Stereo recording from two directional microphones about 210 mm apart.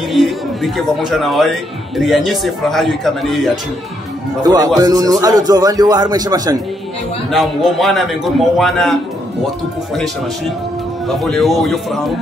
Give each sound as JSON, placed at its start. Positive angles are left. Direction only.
{"t": 0.1, "sound": "speech", "side_deg": 0}
{"t": 4.4, "sound": "speech", "side_deg": -20}
{"t": 7.2, "sound": "speech", "side_deg": 0}
{"t": 11.1, "sound": "speech", "side_deg": 0}